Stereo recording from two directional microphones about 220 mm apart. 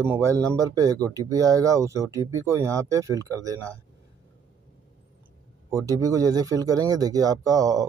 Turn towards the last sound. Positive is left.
turn(degrees=-15)  # may be behind; listen again after turning